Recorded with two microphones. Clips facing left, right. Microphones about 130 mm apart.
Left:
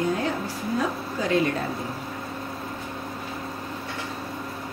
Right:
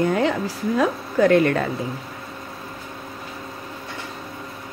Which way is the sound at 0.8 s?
60° right (ahead or behind).